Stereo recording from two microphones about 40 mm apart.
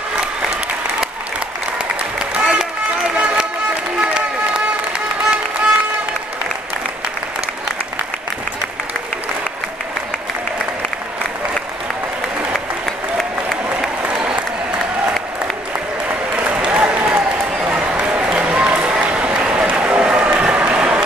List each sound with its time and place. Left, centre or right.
2.4 s run: centre
4.0 s music: right
16.1 s applause: right
17.9 s a sound: right
19.7 s run: right
20.4 s applause: right